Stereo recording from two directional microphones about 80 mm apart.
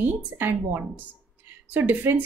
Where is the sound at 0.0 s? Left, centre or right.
Right.